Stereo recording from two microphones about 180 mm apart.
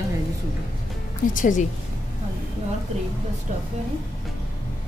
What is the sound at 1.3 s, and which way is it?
Speech, 45° left (ahead or behind).